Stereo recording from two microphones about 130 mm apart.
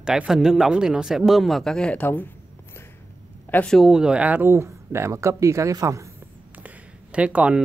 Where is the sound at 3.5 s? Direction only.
5° left (ahead or behind); by 6.1 s 25° right (ahead or behind).